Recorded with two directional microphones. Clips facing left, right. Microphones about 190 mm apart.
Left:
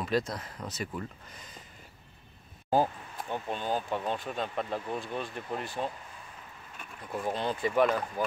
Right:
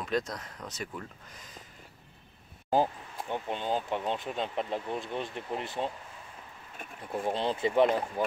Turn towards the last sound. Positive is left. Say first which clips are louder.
# right 1 dB
turn(degrees=-25)  # may be behind; listen again after turning